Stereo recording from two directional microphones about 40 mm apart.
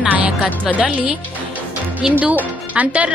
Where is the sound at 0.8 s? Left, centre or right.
Right.